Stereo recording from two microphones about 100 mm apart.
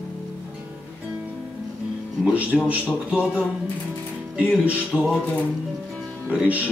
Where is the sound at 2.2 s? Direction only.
10° right (ahead or behind).